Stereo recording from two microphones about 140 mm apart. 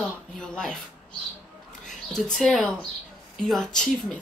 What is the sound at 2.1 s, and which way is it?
Speech, 5° left (ahead or behind).